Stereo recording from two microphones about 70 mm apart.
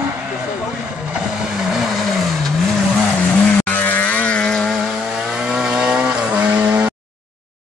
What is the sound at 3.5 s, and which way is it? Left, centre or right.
Vehicle, left.